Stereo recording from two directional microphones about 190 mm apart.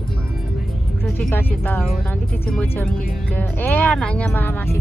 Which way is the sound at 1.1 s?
10° left (ahead or behind).